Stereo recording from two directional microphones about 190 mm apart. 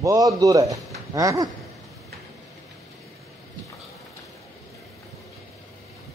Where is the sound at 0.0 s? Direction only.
15° right (ahead or behind).